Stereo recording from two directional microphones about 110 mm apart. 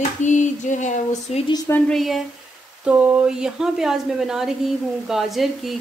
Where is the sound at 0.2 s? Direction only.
90° left.